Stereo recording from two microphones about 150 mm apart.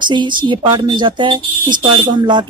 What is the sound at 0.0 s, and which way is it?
Speech, 30° right (ahead or behind).